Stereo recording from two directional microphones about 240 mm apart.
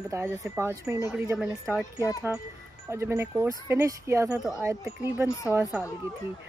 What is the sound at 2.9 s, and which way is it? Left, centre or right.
Speech, centre.